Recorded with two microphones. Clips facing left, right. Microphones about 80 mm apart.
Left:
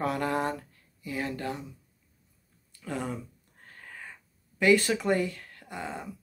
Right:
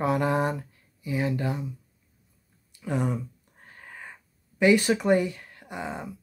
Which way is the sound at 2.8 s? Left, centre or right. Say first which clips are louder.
Right 6 dB; centre.